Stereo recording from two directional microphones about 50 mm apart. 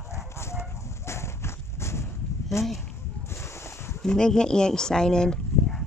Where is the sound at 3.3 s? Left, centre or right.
Left.